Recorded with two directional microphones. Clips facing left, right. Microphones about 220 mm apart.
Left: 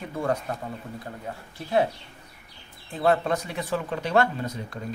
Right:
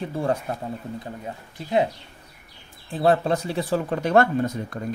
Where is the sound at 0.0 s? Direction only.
30° right (ahead or behind).